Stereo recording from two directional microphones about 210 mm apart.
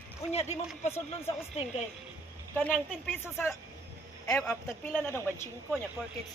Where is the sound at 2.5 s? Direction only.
10° left (ahead or behind).